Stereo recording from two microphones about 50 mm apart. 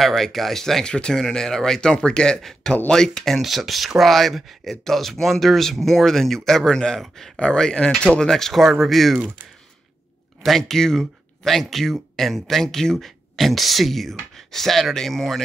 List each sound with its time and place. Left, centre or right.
0.0 s speech: centre
7.3 s speech: centre
10.4 s speech: centre